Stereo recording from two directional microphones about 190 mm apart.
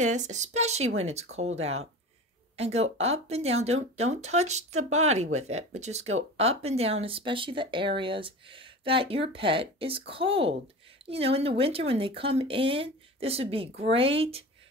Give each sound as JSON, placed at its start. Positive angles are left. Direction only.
{"t": 0.0, "sound": "speech", "side_deg": -40}